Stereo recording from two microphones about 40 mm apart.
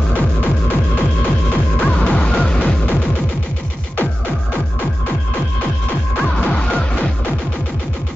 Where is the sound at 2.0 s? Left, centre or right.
Left.